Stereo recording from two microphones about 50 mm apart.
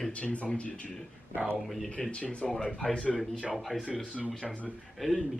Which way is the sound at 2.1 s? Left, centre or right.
Left.